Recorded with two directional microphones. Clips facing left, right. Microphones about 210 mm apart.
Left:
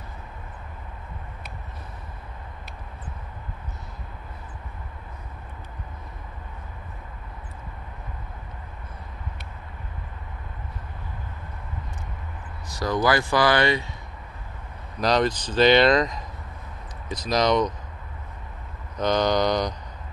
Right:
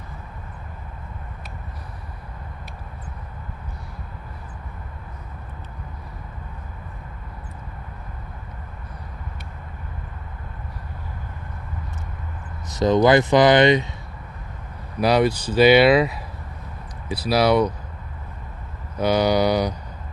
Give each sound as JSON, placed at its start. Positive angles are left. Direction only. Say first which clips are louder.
{"t": 12.6, "sound": "speech", "louder": "right 7 dB", "side_deg": -20}
{"t": 15.0, "sound": "speech", "louder": "right 4 dB", "side_deg": -10}
{"t": 18.9, "sound": "a sound", "louder": "right 3 dB", "side_deg": -10}